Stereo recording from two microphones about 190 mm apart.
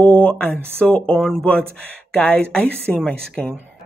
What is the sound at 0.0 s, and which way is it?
Speech, 5° left (ahead or behind).